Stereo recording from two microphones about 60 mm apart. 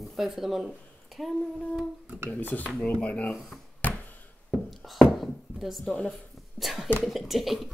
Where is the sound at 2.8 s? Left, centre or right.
Centre.